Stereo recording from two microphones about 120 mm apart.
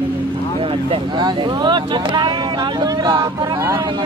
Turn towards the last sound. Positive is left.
turn(degrees=-40)  # may be behind; listen again after turning